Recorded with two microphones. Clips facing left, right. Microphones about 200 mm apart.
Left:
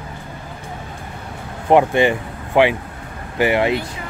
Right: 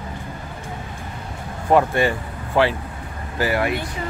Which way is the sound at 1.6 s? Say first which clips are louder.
Left 3 dB; 20° left (ahead or behind).